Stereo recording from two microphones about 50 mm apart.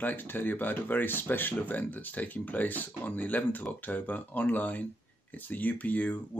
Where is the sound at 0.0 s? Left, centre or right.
Left.